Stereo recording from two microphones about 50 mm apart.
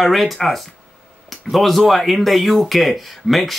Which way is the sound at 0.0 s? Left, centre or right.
Centre.